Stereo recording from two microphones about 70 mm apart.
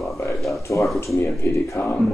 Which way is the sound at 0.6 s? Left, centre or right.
Left.